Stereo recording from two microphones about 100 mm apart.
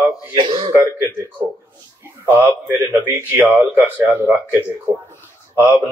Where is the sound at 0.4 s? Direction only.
55° right (ahead or behind).